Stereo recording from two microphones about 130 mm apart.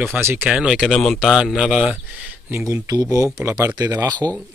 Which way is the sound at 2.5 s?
25° right (ahead or behind).